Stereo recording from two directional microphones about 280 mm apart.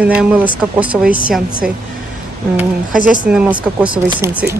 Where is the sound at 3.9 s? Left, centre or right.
Centre.